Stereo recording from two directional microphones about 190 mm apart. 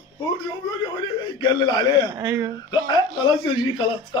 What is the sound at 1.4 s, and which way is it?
Speech, 20° left (ahead or behind).